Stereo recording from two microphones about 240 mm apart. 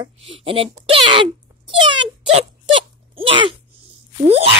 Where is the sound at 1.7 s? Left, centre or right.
Centre.